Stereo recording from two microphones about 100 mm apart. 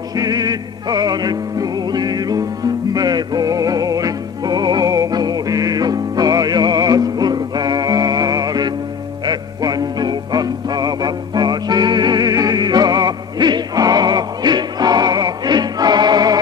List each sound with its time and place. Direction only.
0.1 s music: 40° right (ahead or behind)